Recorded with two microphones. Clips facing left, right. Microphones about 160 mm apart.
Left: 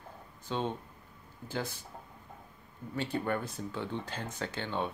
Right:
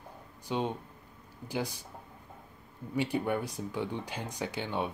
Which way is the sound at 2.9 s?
10° right (ahead or behind).